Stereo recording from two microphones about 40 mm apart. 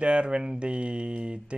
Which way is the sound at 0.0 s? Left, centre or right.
Right.